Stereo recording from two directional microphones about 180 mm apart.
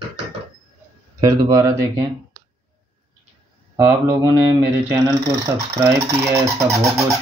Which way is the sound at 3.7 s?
15° right (ahead or behind).